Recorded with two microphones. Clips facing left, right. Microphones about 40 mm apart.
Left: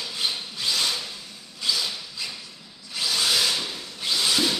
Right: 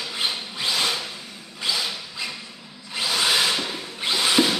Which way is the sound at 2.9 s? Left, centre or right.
Right.